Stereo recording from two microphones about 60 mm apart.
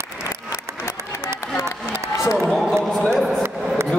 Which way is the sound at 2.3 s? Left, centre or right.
Centre.